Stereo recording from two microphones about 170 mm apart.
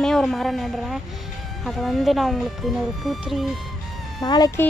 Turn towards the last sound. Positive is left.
turn(degrees=25)  # may be behind; listen again after turning